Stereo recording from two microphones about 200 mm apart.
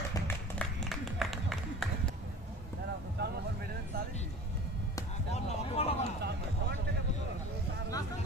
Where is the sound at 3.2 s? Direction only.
55° right (ahead or behind).